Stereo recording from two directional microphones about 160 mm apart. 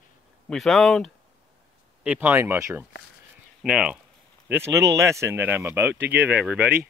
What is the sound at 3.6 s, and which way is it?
Speech, 5° right (ahead or behind).